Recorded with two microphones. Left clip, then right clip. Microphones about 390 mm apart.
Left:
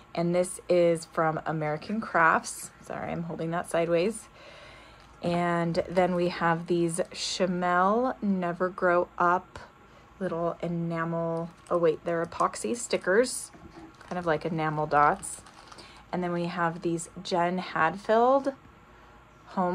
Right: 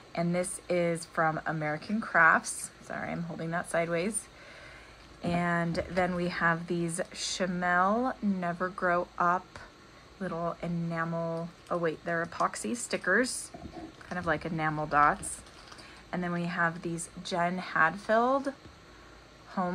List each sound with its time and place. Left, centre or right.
0.1 s speech: centre
5.2 s speech: left
19.6 s speech: centre